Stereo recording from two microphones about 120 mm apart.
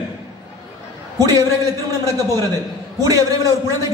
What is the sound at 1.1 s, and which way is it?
A man's voice, 30° right (ahead or behind).